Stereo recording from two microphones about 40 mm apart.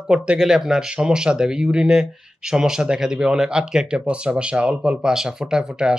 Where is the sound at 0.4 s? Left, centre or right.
Centre.